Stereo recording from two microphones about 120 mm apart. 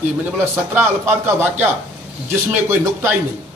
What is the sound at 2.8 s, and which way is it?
Speech, 20° right (ahead or behind).